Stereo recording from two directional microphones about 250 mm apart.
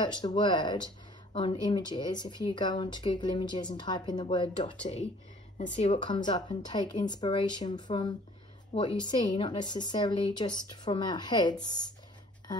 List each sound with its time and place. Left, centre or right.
0.0 s speech: centre